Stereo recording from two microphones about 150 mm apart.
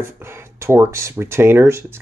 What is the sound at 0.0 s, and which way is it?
Speech, 15° right (ahead or behind).